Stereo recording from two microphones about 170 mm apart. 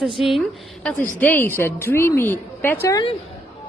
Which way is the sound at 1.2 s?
10° left (ahead or behind).